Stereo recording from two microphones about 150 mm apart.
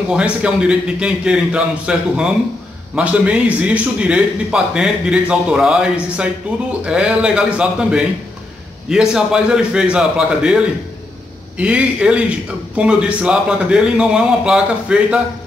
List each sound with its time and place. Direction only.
0.1 s a man's voice: 5° right (ahead or behind)